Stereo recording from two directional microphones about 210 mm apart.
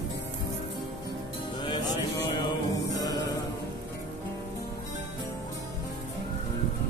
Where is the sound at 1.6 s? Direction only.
20° left (ahead or behind).